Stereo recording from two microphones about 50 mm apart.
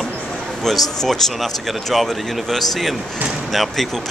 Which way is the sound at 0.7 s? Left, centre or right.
Centre.